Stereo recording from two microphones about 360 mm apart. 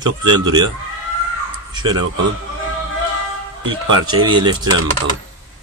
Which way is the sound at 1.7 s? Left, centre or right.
Centre.